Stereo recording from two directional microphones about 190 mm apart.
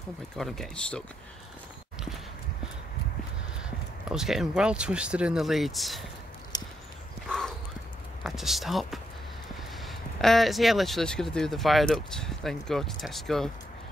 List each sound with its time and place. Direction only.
0.4 s speech: centre (ahead or behind)
4.1 s speech: centre (ahead or behind)
6.5 s horse: 20° left (ahead or behind)
7.2 s horse: 5° left (ahead or behind)
8.2 s speech: centre (ahead or behind)